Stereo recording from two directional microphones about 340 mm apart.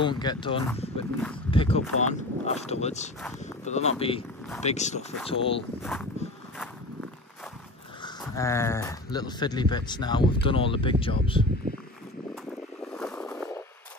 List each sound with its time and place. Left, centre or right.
0.0 s speech: centre
8.0 s speech: centre
12.9 s vehicle: centre